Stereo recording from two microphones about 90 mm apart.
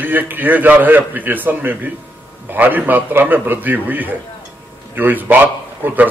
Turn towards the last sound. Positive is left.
turn(degrees=-20)  # may be behind; listen again after turning